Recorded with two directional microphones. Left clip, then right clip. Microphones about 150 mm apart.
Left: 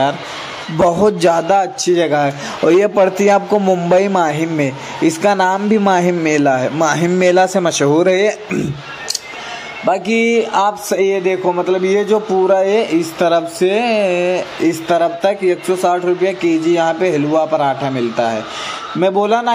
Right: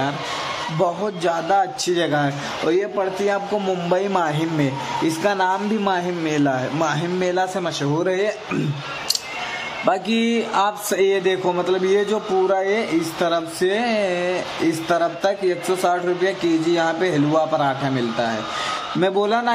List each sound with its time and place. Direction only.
0.8 s speech: 45° left (ahead or behind); by 2.3 s 25° left (ahead or behind)
2.7 s a man's voice: 50° left (ahead or behind)
3.6 s speech: 35° left (ahead or behind)
6.2 s a man's voice: 30° left (ahead or behind)
9.8 s a man's voice: 15° left (ahead or behind)